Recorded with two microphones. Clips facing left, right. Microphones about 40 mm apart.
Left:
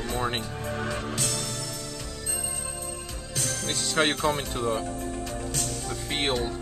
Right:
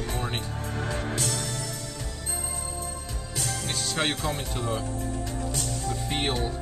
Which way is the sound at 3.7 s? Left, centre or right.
Left.